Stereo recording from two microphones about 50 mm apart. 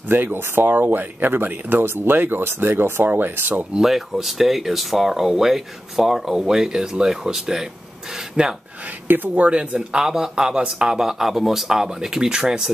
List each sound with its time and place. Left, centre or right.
0.1 s speech: right
3.7 s speech: centre
9.0 s speech: right
9.3 s speech: right